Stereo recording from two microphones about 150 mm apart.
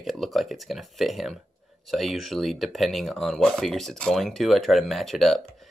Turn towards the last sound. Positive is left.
turn(degrees=0)  # may be behind; listen again after turning